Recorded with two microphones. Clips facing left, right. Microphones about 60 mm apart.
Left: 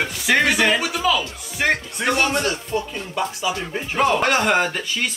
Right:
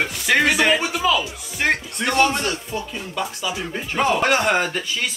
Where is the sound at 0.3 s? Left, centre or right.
Centre.